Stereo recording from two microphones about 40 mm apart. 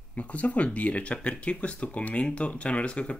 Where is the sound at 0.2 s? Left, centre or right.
Left.